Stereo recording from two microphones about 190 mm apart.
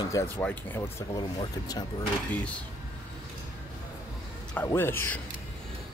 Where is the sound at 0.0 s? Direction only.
15° left (ahead or behind).